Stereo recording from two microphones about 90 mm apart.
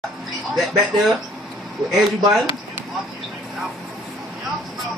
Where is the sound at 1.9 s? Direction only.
Centre (ahead or behind).